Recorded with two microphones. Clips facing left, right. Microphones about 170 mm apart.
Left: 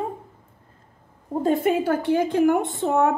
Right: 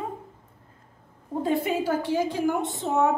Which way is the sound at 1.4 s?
50° left (ahead or behind).